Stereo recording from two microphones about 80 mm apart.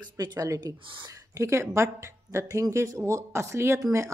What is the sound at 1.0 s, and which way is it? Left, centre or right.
A woman's voice, right.